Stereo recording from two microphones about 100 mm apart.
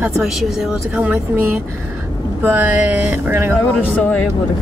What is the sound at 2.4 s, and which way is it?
Speech, 20° right (ahead or behind).